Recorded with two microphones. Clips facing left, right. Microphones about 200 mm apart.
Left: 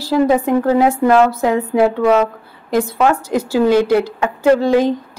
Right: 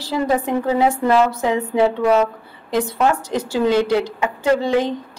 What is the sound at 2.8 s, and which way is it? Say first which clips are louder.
Speech: left 3 dB; 90° left.